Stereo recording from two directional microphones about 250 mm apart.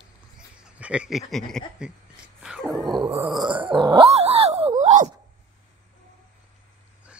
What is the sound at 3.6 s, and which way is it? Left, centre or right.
Dog, centre.